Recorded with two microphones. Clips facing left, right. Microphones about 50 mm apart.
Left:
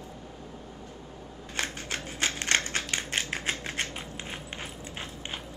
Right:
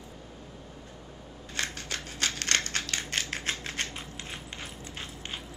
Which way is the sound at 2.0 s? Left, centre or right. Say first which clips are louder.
Left 2 dB; left.